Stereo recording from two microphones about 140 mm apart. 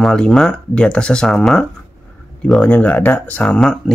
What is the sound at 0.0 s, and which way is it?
Speech, 5° left (ahead or behind).